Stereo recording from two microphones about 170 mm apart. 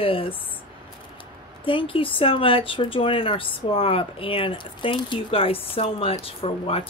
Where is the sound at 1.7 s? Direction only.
30° left (ahead or behind).